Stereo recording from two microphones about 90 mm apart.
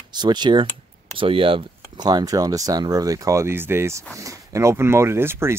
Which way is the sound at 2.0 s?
50° right (ahead or behind).